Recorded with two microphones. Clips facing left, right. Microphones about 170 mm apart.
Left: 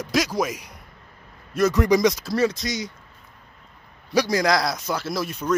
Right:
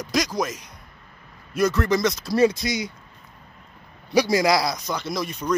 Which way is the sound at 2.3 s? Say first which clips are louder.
Right 3 dB; 10° right (ahead or behind).